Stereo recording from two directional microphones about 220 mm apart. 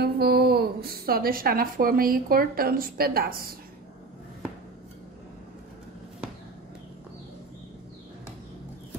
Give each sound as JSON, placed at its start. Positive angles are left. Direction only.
{"t": 0.0, "sound": "a woman's voice", "side_deg": -45}